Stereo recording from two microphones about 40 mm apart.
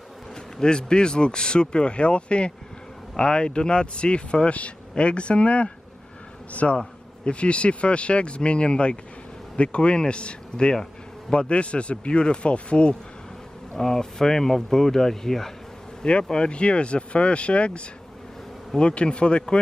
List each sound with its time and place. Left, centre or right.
0.6 s a man's voice: left
13.7 s speech: centre
16.0 s speech: left